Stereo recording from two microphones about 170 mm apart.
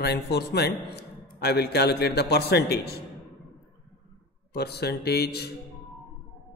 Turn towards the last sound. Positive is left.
turn(degrees=70)  # may be behind; listen again after turning